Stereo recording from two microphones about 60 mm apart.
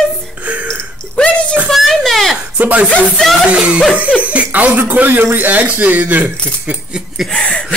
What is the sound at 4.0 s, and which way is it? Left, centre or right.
Cough, right.